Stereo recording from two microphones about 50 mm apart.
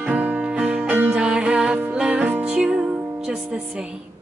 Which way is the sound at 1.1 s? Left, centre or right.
Centre.